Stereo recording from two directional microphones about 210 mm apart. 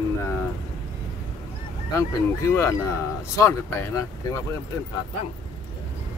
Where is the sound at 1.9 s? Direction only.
15° left (ahead or behind).